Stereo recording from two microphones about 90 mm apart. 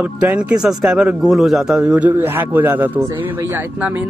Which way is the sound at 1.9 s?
20° right (ahead or behind).